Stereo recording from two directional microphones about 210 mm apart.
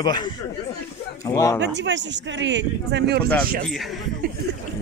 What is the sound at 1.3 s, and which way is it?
Speech, 15° left (ahead or behind).